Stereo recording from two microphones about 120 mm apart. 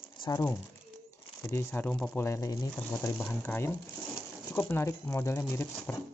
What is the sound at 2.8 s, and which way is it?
Speech, 15° left (ahead or behind).